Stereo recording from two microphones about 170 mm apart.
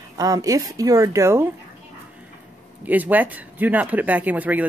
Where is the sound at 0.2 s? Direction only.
20° right (ahead or behind).